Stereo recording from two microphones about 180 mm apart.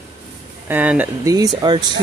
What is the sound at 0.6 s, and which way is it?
Speech, 10° right (ahead or behind).